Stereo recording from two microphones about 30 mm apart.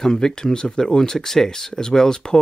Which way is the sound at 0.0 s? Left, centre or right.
Left.